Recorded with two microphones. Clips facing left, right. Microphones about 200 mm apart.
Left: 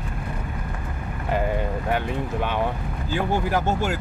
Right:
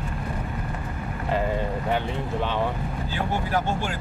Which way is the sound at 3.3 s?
45° left (ahead or behind).